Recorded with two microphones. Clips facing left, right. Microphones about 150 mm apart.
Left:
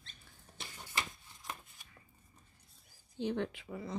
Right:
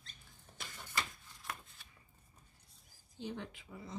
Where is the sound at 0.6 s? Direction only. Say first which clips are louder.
Even; 10° left (ahead or behind).